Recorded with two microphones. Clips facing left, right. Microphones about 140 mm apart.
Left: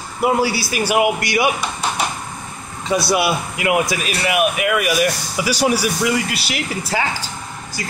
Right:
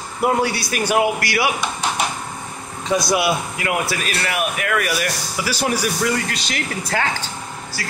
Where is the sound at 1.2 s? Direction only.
20° left (ahead or behind).